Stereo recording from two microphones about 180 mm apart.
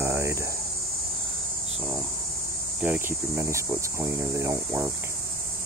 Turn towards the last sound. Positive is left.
turn(degrees=-15)  # may be behind; listen again after turning